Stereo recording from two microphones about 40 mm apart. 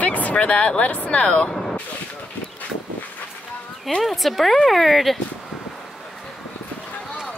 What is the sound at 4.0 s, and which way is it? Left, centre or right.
Speech, centre.